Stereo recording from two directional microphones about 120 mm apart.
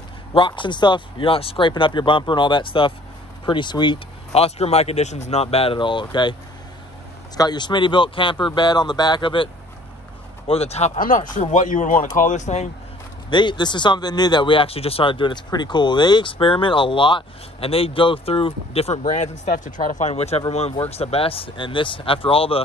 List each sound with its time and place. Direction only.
0.3 s speech: 45° left (ahead or behind)
4.3 s speech: 60° left (ahead or behind); by 6.3 s 40° left (ahead or behind)
7.3 s speech: 35° left (ahead or behind)
10.4 s speech: 55° left (ahead or behind); by 11.2 s 80° left
11.3 s speech: 90° left
13.3 s speech: 40° left (ahead or behind)